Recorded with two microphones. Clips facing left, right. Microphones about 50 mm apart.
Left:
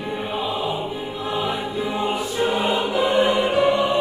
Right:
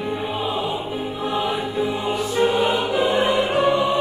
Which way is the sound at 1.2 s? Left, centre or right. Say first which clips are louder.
Right 1 dB; right.